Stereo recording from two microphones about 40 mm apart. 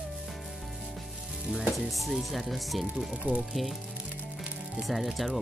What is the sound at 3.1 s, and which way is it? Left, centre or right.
Speech, right.